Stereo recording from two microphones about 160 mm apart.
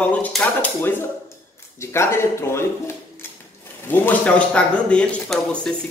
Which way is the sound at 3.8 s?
10° left (ahead or behind).